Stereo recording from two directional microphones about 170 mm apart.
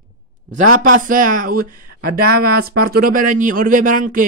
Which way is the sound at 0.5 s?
50° right (ahead or behind).